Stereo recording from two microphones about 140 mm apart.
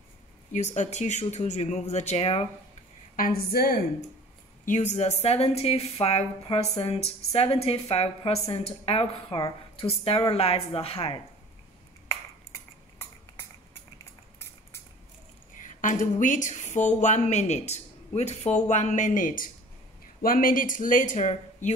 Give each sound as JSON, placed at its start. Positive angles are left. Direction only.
{"t": 0.5, "sound": "a woman's voice", "side_deg": 55}
{"t": 3.2, "sound": "a woman's voice", "side_deg": 90}
{"t": 4.6, "sound": "a woman's voice", "side_deg": 55}
{"t": 15.5, "sound": "a woman's voice", "side_deg": 65}
{"t": 20.2, "sound": "speech", "side_deg": 90}